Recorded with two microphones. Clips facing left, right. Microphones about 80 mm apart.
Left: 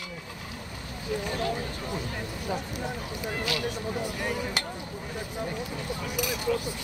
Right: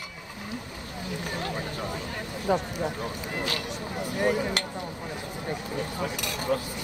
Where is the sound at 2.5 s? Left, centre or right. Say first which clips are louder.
Right 8 dB; right.